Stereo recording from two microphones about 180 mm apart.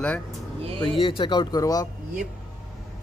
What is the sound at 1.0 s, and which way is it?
Speech, 30° left (ahead or behind).